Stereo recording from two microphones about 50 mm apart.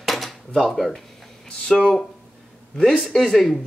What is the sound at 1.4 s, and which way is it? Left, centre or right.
Speech, centre.